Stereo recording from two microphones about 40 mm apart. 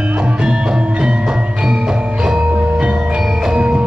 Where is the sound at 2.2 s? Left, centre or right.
Right.